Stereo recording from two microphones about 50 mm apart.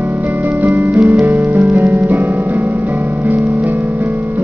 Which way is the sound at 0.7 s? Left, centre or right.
Right.